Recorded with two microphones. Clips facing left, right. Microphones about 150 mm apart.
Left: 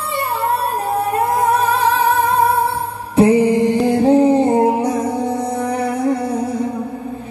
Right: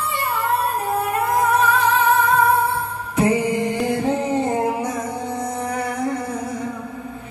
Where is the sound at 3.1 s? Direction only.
30° left (ahead or behind).